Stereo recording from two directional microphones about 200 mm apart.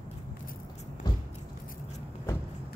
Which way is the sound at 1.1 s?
20° left (ahead or behind).